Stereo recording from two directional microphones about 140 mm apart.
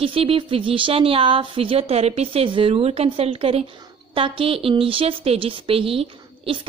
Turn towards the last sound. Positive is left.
turn(degrees=-40)  # may be behind; listen again after turning